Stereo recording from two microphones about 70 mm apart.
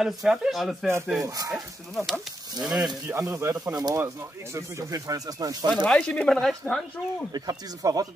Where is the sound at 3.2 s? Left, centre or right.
Right.